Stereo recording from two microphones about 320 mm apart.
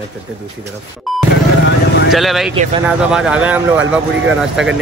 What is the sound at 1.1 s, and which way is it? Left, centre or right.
Music, centre.